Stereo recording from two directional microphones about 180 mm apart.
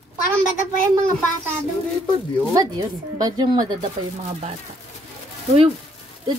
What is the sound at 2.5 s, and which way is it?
Speech, 20° right (ahead or behind).